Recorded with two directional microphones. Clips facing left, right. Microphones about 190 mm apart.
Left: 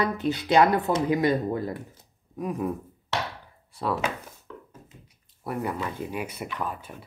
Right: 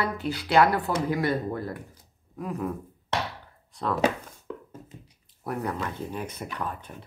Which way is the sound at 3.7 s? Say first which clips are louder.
Left 1 dB; 10° left (ahead or behind).